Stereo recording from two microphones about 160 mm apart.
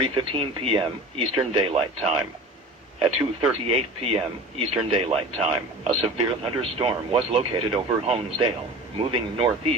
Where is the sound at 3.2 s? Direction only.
35° right (ahead or behind).